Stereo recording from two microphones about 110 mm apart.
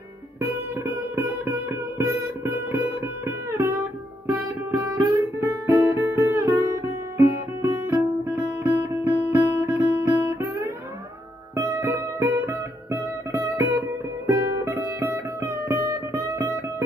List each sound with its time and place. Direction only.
2.0 s music: 20° right (ahead or behind)
3.4 s guitar: 25° right (ahead or behind)
4.3 s music: 25° right (ahead or behind)
4.9 s guitar: 30° right (ahead or behind)
11.5 s music: 25° right (ahead or behind)